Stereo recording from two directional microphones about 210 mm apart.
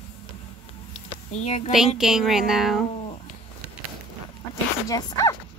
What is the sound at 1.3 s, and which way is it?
Speech, 30° left (ahead or behind).